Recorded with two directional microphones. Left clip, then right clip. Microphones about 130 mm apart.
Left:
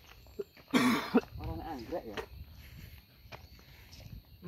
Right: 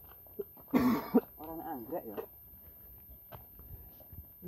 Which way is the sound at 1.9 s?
5° left (ahead or behind).